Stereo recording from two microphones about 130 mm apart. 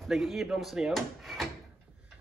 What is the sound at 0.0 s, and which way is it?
Speech, centre (ahead or behind).